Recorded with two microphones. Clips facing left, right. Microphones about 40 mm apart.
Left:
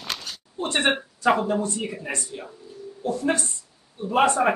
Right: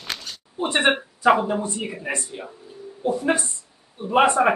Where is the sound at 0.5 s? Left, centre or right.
Centre.